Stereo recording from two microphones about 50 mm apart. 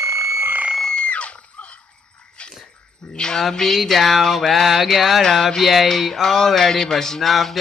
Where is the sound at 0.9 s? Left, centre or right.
Left.